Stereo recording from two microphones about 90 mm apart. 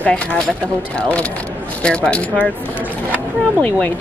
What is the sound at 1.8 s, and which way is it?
Speech, 15° left (ahead or behind).